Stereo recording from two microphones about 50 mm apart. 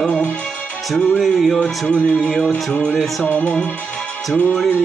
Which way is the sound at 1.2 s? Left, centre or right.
Centre.